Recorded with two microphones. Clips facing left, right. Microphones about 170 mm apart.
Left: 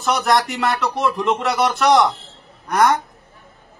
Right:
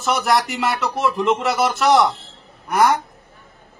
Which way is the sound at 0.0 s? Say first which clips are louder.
Left 1 dB; centre (ahead or behind).